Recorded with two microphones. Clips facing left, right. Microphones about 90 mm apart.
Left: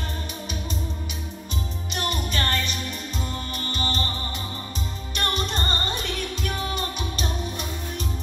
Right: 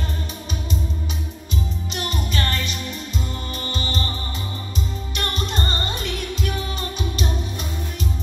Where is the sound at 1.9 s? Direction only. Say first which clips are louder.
Left 2 dB; 40° left (ahead or behind).